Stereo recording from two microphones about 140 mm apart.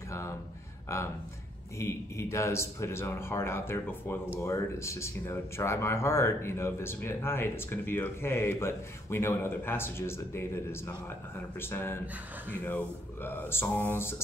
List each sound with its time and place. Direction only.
0.9 s speech: 20° left (ahead or behind)